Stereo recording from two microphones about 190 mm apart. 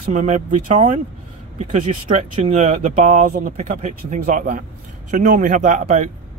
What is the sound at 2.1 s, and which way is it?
Speech, 35° right (ahead or behind).